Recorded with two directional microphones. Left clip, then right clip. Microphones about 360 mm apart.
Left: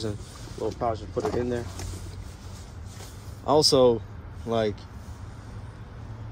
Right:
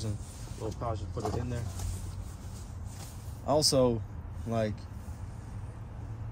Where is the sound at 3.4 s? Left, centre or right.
Centre.